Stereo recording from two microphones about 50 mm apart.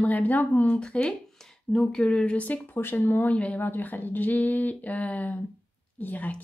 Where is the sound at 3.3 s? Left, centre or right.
Left.